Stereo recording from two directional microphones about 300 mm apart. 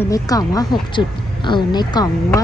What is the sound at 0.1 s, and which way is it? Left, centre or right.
A woman's voice, centre.